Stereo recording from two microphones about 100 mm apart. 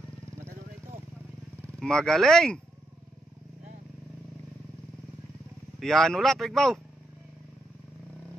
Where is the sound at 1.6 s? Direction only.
5° left (ahead or behind).